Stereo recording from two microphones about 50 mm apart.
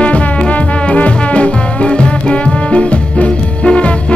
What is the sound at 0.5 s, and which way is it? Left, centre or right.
Music, left.